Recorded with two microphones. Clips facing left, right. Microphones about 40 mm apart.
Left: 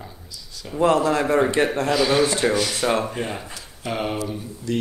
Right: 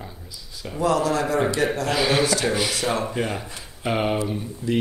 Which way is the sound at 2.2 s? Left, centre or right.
Left.